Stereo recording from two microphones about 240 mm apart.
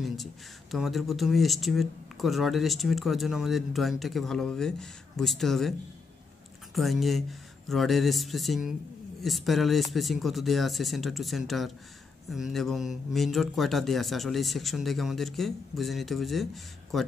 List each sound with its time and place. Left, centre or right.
0.0 s speech: centre